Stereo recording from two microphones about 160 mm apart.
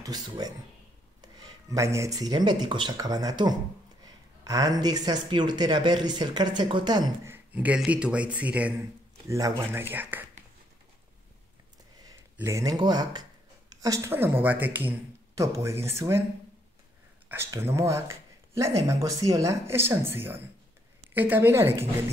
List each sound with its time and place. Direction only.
0.0 s speech: 25° right (ahead or behind)
7.3 s speech: 10° right (ahead or behind)
9.3 s speech: 20° right (ahead or behind)
12.4 s speech: 20° right (ahead or behind)
17.3 s speech: 15° right (ahead or behind)